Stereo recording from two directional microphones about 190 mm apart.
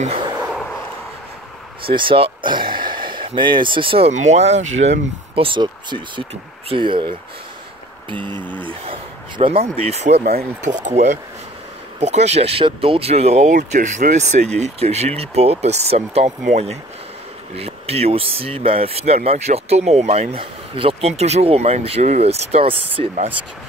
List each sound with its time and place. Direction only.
1.9 s speech: 30° right (ahead or behind)
8.5 s speech: 25° right (ahead or behind)
10.1 s speech: 55° right (ahead or behind)
10.6 s speech: 40° right (ahead or behind)